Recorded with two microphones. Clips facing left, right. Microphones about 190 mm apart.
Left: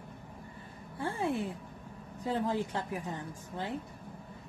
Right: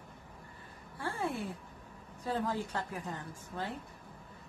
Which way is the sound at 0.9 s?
20° left (ahead or behind).